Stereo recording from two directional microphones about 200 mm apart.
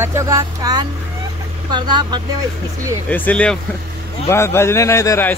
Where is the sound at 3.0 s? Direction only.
5° left (ahead or behind).